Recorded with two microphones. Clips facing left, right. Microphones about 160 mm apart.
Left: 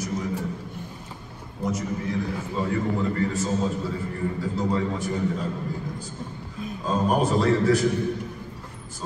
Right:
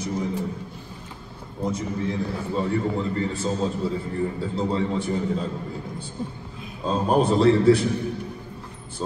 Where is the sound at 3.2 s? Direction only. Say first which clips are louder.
Even; 30° right (ahead or behind).